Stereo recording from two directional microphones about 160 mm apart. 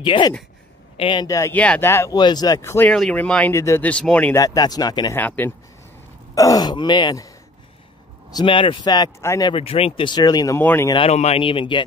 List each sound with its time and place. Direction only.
0.0 s speech: 30° left (ahead or behind)
2.9 s speech: 5° left (ahead or behind)
4.4 s speech: 25° left (ahead or behind)
5.2 s speech: 10° left (ahead or behind)
6.3 s speech: 20° left (ahead or behind)
8.3 s speech: 30° left (ahead or behind)
9.5 s speech: 35° left (ahead or behind)
10.6 s speech: 10° left (ahead or behind)
11.1 s speech: 40° left (ahead or behind)